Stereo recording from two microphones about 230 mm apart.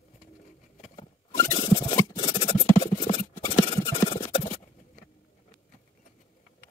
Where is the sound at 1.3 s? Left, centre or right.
Centre.